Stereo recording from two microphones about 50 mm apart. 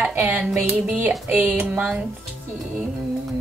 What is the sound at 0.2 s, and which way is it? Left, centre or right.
Speech, right.